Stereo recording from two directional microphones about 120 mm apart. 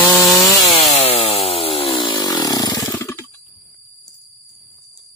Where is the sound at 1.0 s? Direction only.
60° left (ahead or behind); by 3.3 s 20° left (ahead or behind).